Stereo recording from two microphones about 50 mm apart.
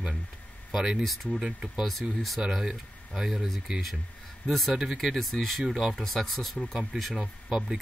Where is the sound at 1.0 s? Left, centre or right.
Centre.